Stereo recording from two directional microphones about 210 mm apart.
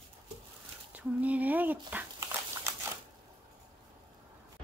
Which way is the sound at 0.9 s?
5° right (ahead or behind).